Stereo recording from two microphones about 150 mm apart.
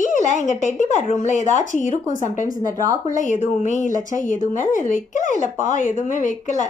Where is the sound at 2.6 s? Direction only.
25° right (ahead or behind).